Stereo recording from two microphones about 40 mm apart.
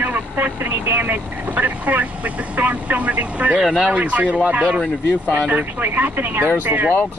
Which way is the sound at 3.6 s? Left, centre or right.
Centre.